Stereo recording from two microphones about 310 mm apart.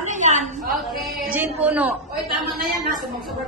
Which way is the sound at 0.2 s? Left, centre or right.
Right.